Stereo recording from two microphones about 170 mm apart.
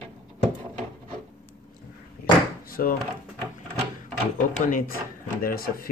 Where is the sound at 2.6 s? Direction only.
60° left (ahead or behind).